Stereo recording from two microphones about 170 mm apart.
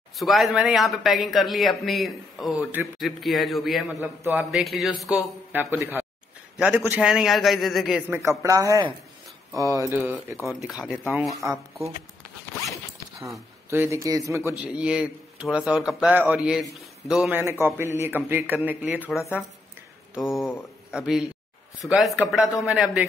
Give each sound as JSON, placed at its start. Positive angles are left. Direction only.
{"t": 0.2, "sound": "speech", "side_deg": 0}
{"t": 4.0, "sound": "a man's voice", "side_deg": -10}
{"t": 4.4, "sound": "speech", "side_deg": 0}
{"t": 5.5, "sound": "a man's voice", "side_deg": -10}
{"t": 8.1, "sound": "a man's voice", "side_deg": -15}
{"t": 13.3, "sound": "speech", "side_deg": -15}
{"t": 14.6, "sound": "a man's voice", "side_deg": -5}
{"t": 20.2, "sound": "speech", "side_deg": 0}